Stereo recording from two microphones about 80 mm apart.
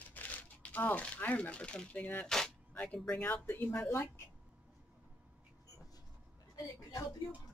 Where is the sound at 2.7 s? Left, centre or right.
Centre.